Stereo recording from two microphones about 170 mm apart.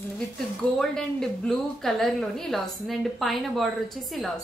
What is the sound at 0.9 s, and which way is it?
A woman's voice, 5° left (ahead or behind).